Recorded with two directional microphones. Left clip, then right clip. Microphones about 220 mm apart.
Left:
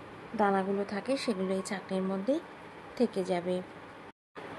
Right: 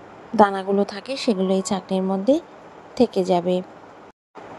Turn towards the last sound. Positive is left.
turn(degrees=-25)  # may be behind; listen again after turning